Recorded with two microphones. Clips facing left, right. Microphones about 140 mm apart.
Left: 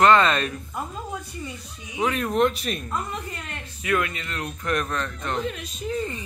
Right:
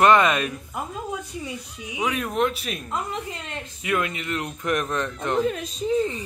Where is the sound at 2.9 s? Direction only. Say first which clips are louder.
Right 1 dB; 25° right (ahead or behind).